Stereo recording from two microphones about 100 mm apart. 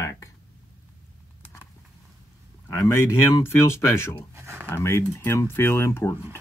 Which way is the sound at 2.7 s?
25° left (ahead or behind).